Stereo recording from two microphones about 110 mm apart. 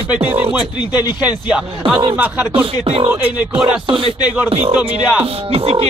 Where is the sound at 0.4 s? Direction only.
15° right (ahead or behind).